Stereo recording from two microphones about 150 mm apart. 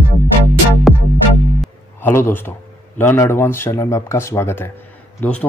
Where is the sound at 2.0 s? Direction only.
15° left (ahead or behind).